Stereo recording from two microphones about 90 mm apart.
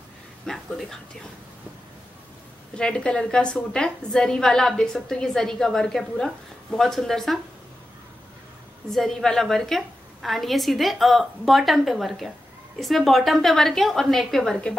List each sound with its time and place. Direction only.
0.5 s speech: 5° left (ahead or behind)
2.7 s a woman's voice: 10° left (ahead or behind)
8.9 s a woman's voice: 5° left (ahead or behind)